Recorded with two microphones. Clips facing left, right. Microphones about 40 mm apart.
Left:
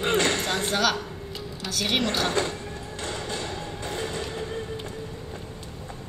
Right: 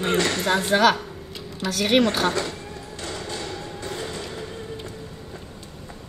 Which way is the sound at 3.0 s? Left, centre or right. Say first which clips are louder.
Even; left.